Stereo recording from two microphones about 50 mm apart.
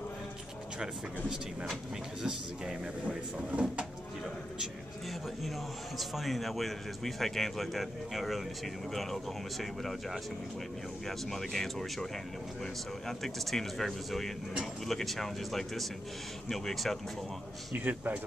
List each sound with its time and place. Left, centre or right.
2.2 s speech: centre
5.9 s speech: centre
11.1 s speech: centre
13.2 s speech: centre
17.7 s a man's voice: right